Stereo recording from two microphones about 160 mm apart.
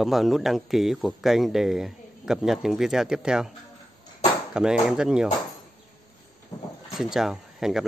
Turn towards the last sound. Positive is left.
turn(degrees=0)  # may be behind; listen again after turning